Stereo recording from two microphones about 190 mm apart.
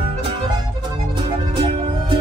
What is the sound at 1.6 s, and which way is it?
Music, 25° right (ahead or behind).